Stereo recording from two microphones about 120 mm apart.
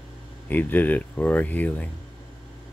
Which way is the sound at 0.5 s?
15° left (ahead or behind).